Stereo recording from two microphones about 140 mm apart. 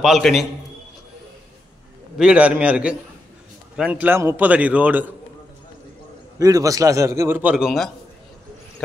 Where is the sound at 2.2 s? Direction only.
10° right (ahead or behind).